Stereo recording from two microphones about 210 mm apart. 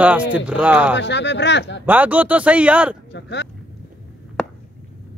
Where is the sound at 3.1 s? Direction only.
55° left (ahead or behind).